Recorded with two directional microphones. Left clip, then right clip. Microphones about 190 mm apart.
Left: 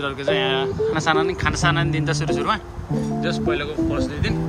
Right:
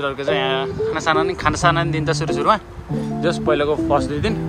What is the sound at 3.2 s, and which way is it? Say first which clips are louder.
Speech: right 7 dB; 5° right (ahead or behind).